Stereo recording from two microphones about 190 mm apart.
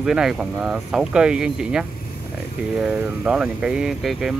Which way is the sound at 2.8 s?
5° right (ahead or behind).